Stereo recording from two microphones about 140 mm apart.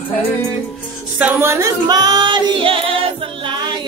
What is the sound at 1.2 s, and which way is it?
Singing, 15° right (ahead or behind).